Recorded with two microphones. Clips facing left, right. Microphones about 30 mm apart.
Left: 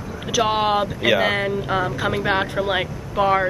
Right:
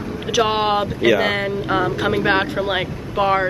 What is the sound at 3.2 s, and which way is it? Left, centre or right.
Speech, right.